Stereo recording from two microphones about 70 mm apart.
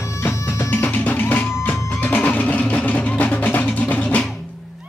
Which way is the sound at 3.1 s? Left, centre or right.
Left.